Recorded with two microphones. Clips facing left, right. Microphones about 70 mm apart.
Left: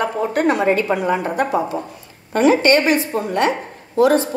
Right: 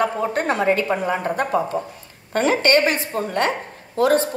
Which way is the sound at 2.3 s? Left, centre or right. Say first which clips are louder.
Left 5 dB; right.